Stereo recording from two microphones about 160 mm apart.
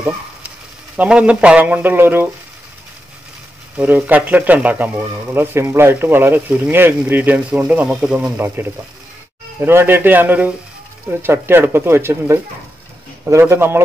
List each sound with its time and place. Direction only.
0.9 s speech: 5° right (ahead or behind)
3.7 s speech: 10° right (ahead or behind)